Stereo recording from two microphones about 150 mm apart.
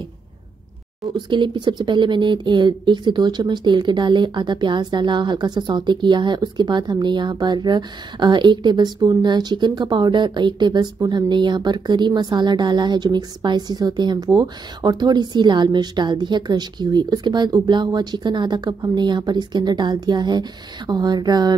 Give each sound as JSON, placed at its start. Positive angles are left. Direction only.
{"t": 1.1, "sound": "speech", "side_deg": -30}